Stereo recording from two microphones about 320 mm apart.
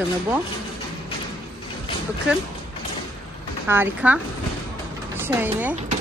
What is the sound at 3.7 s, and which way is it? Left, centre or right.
Speech, centre.